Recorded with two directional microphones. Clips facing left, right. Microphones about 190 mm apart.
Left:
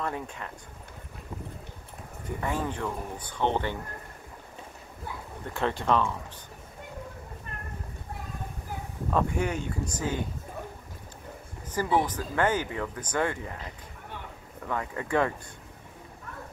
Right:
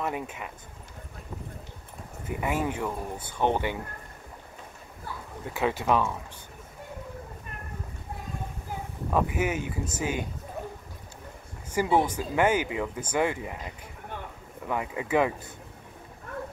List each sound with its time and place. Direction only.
0.0 s speech: 15° right (ahead or behind)
2.2 s speech: 10° right (ahead or behind)
5.5 s speech: 5° right (ahead or behind)
9.1 s speech: 5° right (ahead or behind)
11.7 s speech: 20° right (ahead or behind)
14.7 s speech: 10° right (ahead or behind)